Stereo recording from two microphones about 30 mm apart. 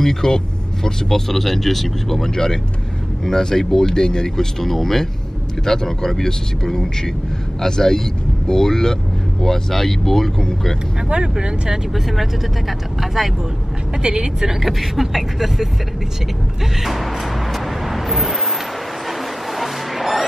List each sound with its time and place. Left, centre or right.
0.0 s speech: centre
4.6 s speech: centre
11.9 s speech: centre
14.0 s speech: right
14.6 s speech: centre
16.8 s vehicle: centre
19.0 s music: centre